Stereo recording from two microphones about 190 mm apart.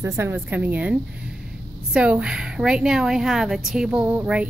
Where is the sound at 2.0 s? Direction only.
5° right (ahead or behind).